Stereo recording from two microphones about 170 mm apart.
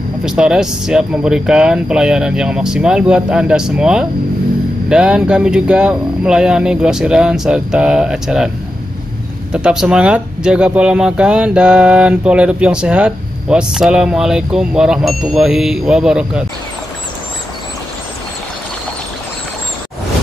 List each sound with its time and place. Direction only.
0.2 s speech: 5° right (ahead or behind)
9.5 s speech: 5° right (ahead or behind)